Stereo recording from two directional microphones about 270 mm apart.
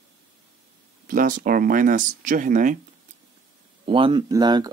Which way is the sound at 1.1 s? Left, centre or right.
Right.